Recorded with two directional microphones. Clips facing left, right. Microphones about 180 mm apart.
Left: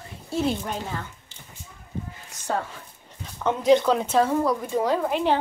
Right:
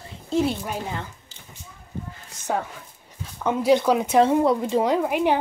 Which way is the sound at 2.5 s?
10° right (ahead or behind).